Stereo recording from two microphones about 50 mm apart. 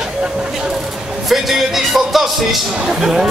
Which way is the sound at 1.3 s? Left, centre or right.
Centre.